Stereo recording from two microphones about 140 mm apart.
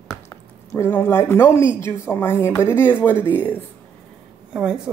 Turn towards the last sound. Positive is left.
turn(degrees=-5)  # may be behind; listen again after turning